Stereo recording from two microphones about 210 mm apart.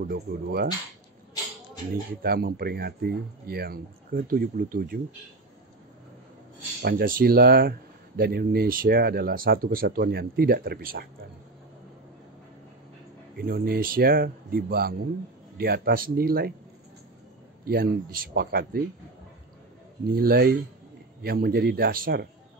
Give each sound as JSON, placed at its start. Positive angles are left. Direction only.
{"t": 0.0, "sound": "speech", "side_deg": -45}
{"t": 2.2, "sound": "speech", "side_deg": -45}
{"t": 6.8, "sound": "speech", "side_deg": -45}
{"t": 13.4, "sound": "speech", "side_deg": -45}
{"t": 17.6, "sound": "speech", "side_deg": -45}
{"t": 20.1, "sound": "speech", "side_deg": -45}